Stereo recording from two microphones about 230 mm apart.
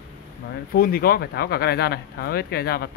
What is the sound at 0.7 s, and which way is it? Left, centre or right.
Speech, left.